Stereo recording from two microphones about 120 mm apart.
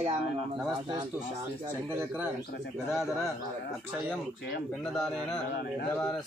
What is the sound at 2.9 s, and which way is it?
Mantra, centre (ahead or behind).